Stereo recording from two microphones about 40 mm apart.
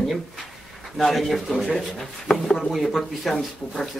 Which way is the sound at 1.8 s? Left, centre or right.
Centre.